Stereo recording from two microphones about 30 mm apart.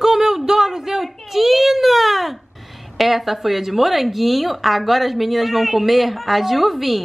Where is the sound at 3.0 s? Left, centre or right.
Centre.